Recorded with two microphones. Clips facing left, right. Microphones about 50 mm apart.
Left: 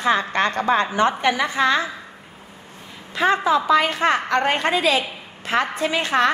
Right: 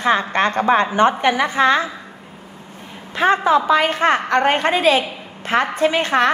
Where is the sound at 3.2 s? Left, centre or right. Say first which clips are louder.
Right 3 dB; right.